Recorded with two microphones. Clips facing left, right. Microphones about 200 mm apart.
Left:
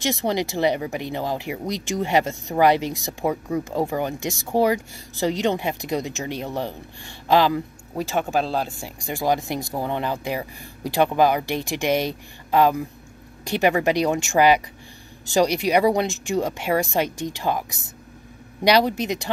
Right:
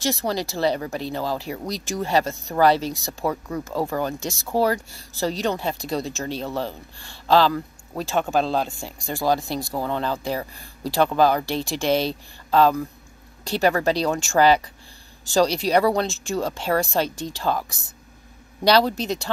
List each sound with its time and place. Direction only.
0.0 s speech: 20° left (ahead or behind)